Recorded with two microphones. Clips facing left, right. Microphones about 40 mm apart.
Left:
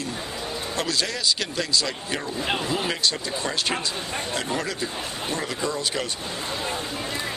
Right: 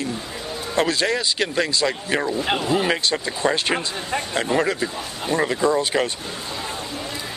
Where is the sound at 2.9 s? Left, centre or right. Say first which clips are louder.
Right 3 dB; right.